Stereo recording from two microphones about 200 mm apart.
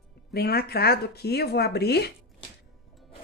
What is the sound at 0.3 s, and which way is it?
Speech, 50° left (ahead or behind).